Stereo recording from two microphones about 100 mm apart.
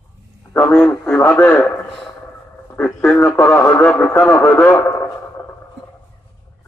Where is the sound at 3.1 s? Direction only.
25° left (ahead or behind).